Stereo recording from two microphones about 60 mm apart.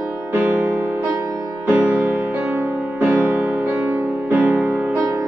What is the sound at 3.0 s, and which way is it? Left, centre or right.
Music, right.